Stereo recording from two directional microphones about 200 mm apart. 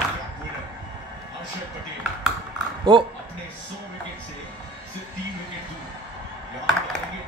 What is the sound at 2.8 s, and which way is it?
Speech, 25° right (ahead or behind).